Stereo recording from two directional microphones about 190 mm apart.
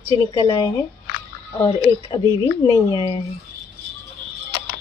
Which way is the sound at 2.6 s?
15° left (ahead or behind).